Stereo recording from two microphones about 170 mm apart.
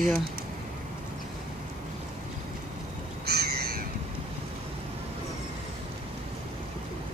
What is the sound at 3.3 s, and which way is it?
Crow, 70° right (ahead or behind).